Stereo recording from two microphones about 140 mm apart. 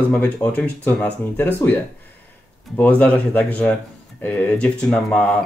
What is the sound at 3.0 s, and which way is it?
Speech, 10° left (ahead or behind).